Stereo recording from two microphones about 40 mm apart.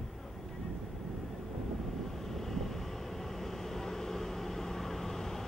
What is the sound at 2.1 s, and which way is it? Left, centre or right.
Vehicle, centre.